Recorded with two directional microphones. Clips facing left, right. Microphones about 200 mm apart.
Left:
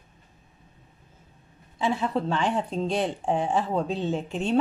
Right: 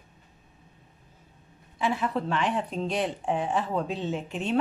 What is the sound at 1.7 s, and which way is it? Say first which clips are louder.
Speech: left 2 dB; 30° left (ahead or behind).